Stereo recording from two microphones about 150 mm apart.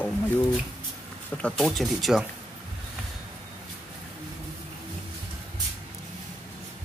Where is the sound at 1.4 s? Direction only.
Centre (ahead or behind).